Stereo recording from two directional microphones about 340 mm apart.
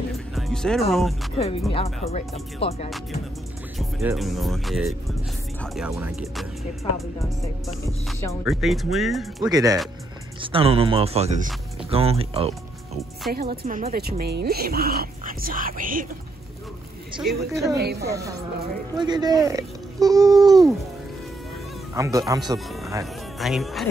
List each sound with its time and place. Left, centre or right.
0.3 s music: centre
0.9 s speech: centre
1.3 s speech: centre
3.7 s speech: centre; by 16.1 s right
17.2 s speech: centre
21.9 s speech: centre